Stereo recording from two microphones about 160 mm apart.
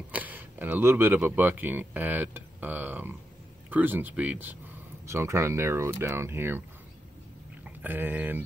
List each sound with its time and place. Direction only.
0.1 s speech: 10° right (ahead or behind)
7.6 s speech: 10° right (ahead or behind)